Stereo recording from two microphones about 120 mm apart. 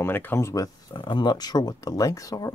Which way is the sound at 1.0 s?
40° left (ahead or behind).